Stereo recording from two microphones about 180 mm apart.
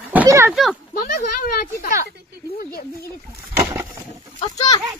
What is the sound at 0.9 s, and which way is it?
Speech, 50° left (ahead or behind).